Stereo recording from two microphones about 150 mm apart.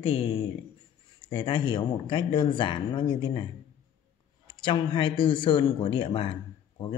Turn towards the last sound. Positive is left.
turn(degrees=35)  # may be behind; listen again after turning